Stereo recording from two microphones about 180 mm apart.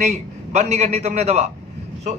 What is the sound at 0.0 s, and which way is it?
A man's voice, 40° right (ahead or behind).